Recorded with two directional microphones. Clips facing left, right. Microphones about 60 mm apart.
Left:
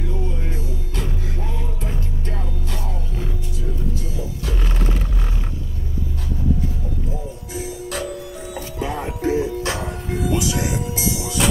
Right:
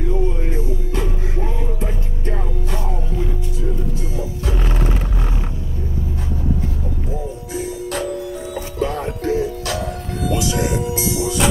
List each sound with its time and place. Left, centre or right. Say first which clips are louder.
0.9 s music: right 2 dB; right
4.5 s music: right 5 dB; right
8.7 s music: right 4 dB; centre
9.3 s music: right 1 dB; left
10.1 s music: right 1 dB; centre